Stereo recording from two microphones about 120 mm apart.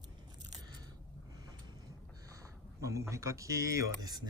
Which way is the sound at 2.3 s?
30° right (ahead or behind).